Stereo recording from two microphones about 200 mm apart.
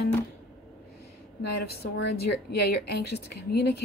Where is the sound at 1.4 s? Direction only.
55° left (ahead or behind).